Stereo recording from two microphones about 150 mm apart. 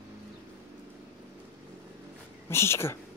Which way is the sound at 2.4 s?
15° left (ahead or behind).